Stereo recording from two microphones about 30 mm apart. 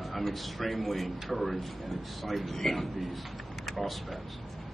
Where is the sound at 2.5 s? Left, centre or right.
Centre.